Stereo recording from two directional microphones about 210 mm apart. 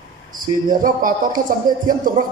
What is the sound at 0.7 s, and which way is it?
Speech, 40° right (ahead or behind).